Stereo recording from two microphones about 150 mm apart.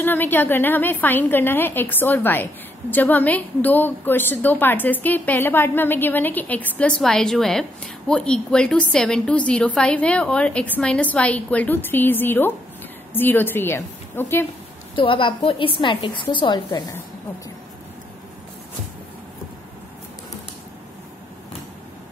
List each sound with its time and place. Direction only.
0.0 s a woman's voice: 15° left (ahead or behind)
15.0 s a woman's voice: 35° left (ahead or behind)